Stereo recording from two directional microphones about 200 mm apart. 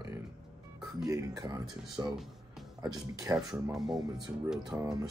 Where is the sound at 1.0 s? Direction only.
15° right (ahead or behind).